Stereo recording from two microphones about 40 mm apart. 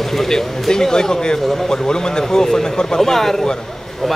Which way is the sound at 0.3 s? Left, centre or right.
Centre.